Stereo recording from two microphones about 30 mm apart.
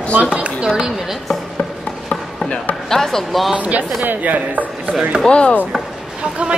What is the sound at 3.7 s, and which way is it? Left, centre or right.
Speech, right.